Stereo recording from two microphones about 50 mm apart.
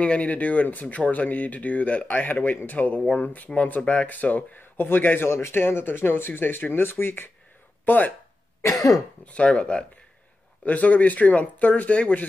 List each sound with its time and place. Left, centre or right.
0.0 s speech: left
7.8 s speech: left
8.6 s cough: left
9.2 s speech: left
10.6 s speech: left